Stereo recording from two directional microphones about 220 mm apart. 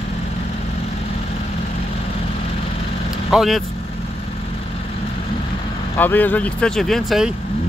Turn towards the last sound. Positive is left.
turn(degrees=0)  # may be behind; listen again after turning